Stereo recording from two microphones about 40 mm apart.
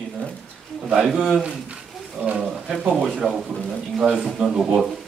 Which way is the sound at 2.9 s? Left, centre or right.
Centre.